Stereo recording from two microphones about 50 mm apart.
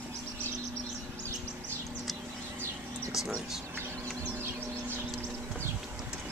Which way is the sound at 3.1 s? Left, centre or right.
Centre.